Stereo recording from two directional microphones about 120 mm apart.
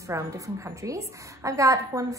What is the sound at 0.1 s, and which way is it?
A woman's voice, 25° right (ahead or behind).